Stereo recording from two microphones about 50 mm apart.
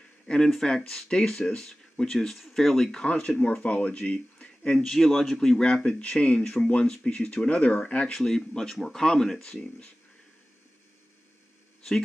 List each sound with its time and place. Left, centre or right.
0.5 s speech: centre
2.9 s speech: left
4.7 s speech: centre
5.9 s speech: left
7.3 s speech: left
8.1 s speech: centre